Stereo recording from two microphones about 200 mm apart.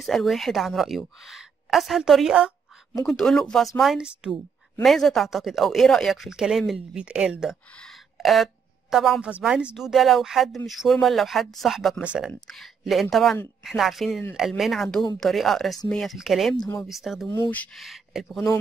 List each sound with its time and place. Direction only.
0.0 s speech: centre (ahead or behind)
16.5 s speech: 20° left (ahead or behind)
16.8 s speech: centre (ahead or behind)
17.3 s speech: 10° left (ahead or behind)